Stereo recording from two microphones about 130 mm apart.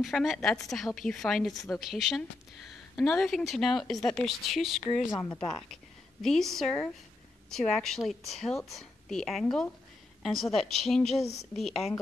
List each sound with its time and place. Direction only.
0.0 s speech: centre (ahead or behind)
5.1 s speech: 25° left (ahead or behind)
6.2 s speech: 5° left (ahead or behind)